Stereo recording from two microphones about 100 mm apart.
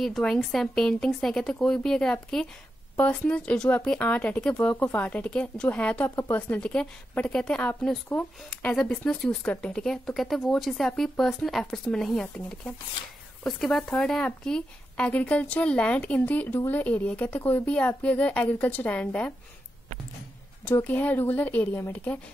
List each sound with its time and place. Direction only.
0.0 s speech: centre (ahead or behind)
6.0 s speech: 30° left (ahead or behind)
6.3 s speech: 15° left (ahead or behind)
20.8 s speech: 15° left (ahead or behind)